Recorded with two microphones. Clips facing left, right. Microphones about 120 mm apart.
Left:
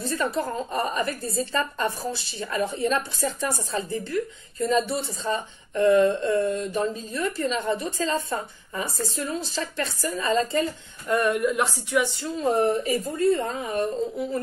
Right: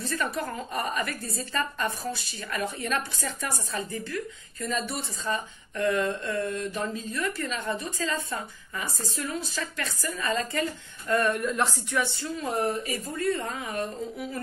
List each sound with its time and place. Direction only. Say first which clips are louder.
0.0 s a woman's voice: left 4 dB; 25° left (ahead or behind)
11.1 s speech: left 3 dB; 15° left (ahead or behind)
12.4 s a woman's voice: left 7 dB; 35° left (ahead or behind)